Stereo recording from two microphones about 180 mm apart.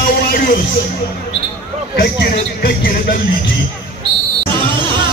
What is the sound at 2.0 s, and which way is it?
A man's voice, 55° left (ahead or behind).